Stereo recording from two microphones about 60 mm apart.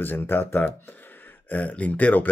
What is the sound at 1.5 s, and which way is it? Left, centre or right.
Speech, left.